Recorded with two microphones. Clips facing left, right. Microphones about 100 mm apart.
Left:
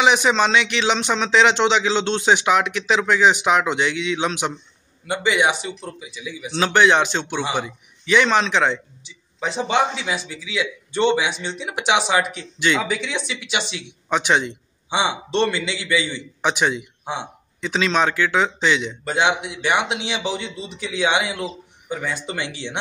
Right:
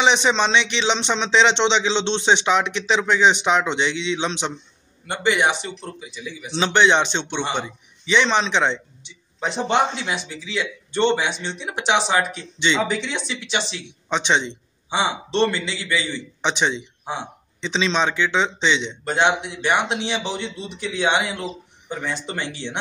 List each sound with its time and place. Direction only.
0.0 s speech: 5° left (ahead or behind)
17.0 s speech: 20° left (ahead or behind)
17.6 s speech: 5° left (ahead or behind)